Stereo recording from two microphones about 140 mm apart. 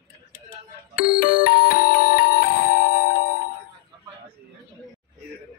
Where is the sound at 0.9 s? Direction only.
85° left.